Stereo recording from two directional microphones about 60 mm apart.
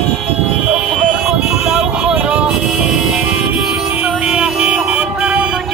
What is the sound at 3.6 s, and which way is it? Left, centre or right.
Music, centre.